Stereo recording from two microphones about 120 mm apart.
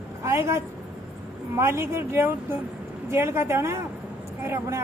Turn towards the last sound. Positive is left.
turn(degrees=-20)  # may be behind; listen again after turning